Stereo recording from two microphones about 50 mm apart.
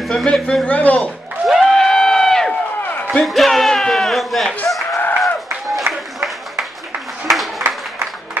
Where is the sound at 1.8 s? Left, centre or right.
Centre.